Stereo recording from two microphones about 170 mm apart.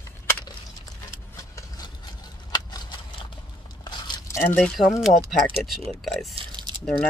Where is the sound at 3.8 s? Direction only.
25° left (ahead or behind).